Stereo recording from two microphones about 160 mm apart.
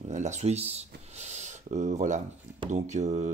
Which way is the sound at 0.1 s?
45° right (ahead or behind).